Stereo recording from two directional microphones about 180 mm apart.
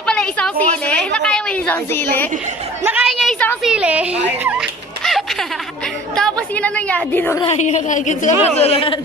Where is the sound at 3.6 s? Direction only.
5° right (ahead or behind).